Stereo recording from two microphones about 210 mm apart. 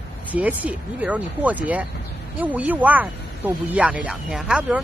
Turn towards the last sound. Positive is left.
turn(degrees=-5)  # may be behind; listen again after turning